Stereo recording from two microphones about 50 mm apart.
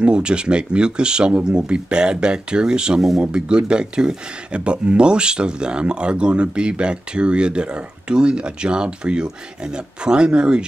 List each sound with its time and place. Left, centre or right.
0.0 s speech: centre